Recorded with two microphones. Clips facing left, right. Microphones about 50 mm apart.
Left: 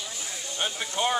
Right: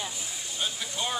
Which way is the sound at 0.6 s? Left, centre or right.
Left.